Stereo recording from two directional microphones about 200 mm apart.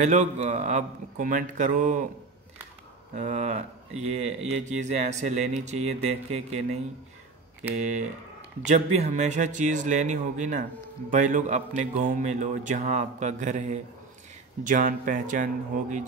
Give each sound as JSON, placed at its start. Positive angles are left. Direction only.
{"t": 0.0, "sound": "speech", "side_deg": -35}
{"t": 3.2, "sound": "speech", "side_deg": -35}